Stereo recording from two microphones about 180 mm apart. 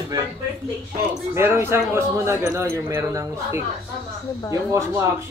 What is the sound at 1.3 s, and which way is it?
Speech, 15° right (ahead or behind).